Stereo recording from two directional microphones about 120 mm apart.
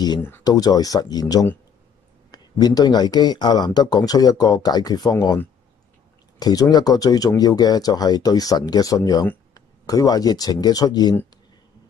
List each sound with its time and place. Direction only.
0.4 s speech: 30° left (ahead or behind)
6.4 s speech: 35° left (ahead or behind)